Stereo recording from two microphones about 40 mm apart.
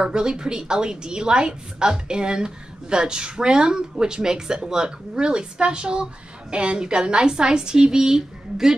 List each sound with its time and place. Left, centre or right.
0.0 s a woman's voice: centre